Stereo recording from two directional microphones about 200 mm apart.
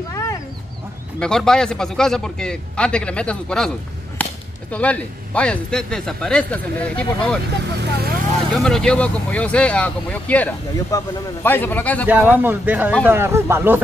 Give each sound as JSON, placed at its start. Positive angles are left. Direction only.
{"t": 1.2, "sound": "speech", "side_deg": 5}
{"t": 7.8, "sound": "speech", "side_deg": -50}
{"t": 8.5, "sound": "speech", "side_deg": 0}
{"t": 12.3, "sound": "speech", "side_deg": -10}